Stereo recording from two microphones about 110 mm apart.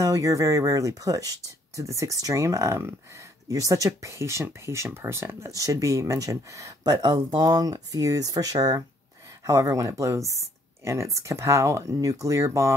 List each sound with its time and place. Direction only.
0.0 s speech: 30° right (ahead or behind)